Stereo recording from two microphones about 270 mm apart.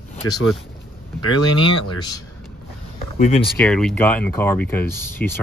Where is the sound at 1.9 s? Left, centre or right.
Centre.